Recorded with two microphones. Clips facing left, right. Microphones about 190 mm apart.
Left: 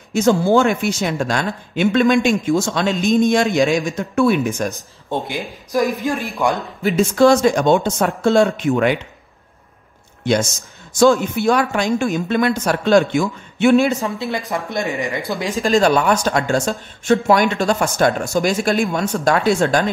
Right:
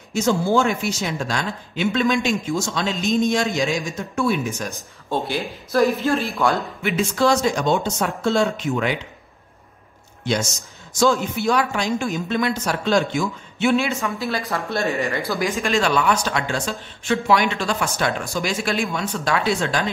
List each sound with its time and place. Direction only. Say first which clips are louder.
0.1 s speech: left 5 dB; 55° left (ahead or behind)
5.1 s speech: even; 20° left (ahead or behind)
6.8 s speech: left 8 dB; 45° left (ahead or behind)
10.2 s speech: left 5 dB; 55° left (ahead or behind)
14.1 s speech: left 2 dB; 20° left (ahead or behind)
15.5 s speech: left 8 dB; 35° left (ahead or behind)